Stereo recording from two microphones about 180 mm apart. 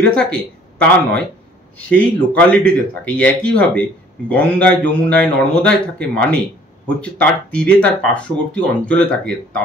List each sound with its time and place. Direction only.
0.1 s a man's voice: 5° left (ahead or behind)